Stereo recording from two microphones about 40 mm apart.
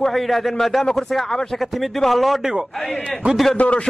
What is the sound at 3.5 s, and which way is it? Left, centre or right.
Speech, left.